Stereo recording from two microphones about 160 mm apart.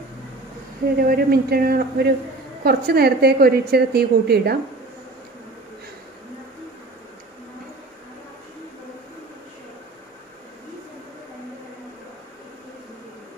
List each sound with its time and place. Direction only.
0.9 s a woman's voice: 70° right (ahead or behind)